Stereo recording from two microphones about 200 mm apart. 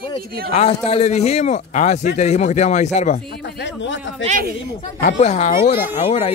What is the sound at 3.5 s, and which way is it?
Speech, 65° left (ahead or behind).